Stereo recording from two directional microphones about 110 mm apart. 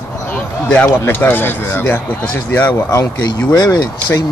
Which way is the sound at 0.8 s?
20° left (ahead or behind).